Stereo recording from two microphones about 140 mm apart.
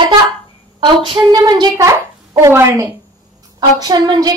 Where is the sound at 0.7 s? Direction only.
35° right (ahead or behind).